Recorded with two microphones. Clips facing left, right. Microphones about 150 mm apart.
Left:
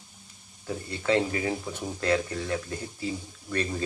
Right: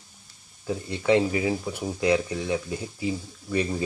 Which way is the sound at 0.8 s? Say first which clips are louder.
Right 4 dB; 20° right (ahead or behind).